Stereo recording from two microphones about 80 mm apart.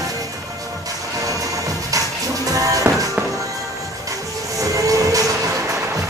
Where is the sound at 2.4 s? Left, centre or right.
Right.